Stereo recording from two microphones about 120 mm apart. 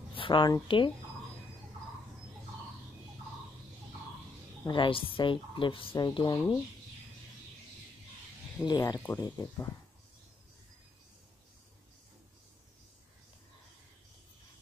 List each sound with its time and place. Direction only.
0.1 s a woman's voice: 45° left (ahead or behind)
4.6 s speech: 45° left (ahead or behind)
8.6 s speech: 35° left (ahead or behind)